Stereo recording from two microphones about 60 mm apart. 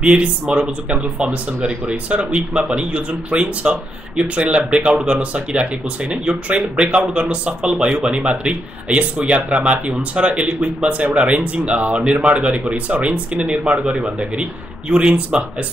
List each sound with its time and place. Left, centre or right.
0.0 s speech: centre